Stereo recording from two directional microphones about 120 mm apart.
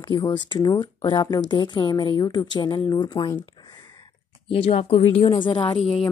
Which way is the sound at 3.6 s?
35° left (ahead or behind).